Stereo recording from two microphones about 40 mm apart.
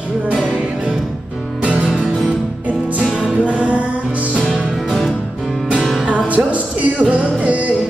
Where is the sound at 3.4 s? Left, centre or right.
Right.